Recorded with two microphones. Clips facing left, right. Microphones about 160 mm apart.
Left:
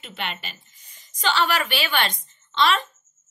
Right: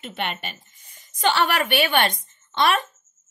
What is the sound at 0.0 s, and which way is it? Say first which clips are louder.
A woman's voice: right 3 dB; 50° right (ahead or behind).